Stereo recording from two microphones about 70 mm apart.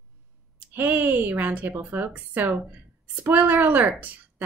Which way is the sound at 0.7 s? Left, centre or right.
Right.